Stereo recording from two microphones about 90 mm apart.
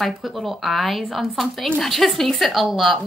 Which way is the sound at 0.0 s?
Centre (ahead or behind).